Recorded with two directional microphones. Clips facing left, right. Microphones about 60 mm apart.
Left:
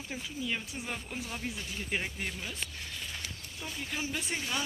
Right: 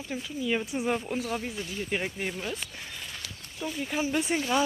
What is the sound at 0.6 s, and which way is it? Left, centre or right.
Speech, right.